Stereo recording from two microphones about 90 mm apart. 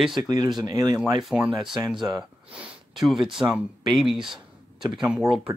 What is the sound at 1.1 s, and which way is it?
Speech, 5° right (ahead or behind).